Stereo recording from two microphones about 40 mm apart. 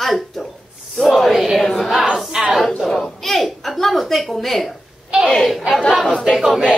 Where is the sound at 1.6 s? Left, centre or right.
Centre.